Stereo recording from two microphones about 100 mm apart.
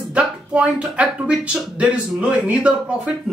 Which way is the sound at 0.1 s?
10° right (ahead or behind).